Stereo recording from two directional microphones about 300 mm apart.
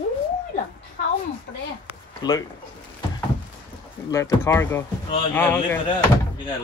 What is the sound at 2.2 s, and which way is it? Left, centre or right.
Speech, centre.